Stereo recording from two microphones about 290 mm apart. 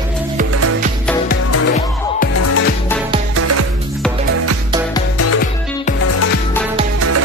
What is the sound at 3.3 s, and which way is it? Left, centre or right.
Music, right.